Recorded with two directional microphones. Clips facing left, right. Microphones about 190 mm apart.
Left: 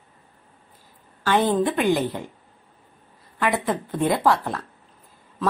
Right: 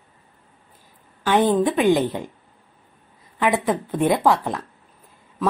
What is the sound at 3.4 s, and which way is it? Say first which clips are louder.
A woman's voice: right 3 dB; 15° right (ahead or behind).